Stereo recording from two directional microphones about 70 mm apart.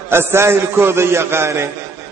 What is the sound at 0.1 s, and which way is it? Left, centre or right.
A man's voice, right.